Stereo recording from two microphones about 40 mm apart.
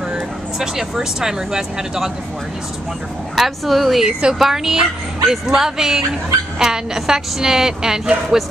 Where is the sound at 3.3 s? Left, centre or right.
Centre.